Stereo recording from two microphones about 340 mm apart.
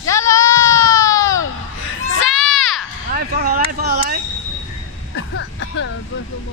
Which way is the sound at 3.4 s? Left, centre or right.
Right.